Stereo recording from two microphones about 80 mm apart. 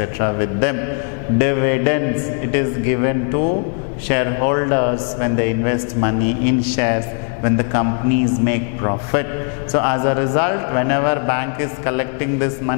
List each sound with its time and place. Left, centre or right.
0.0 s a man's voice: centre